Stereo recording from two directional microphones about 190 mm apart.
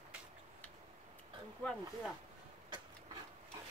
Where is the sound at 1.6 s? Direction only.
5° left (ahead or behind).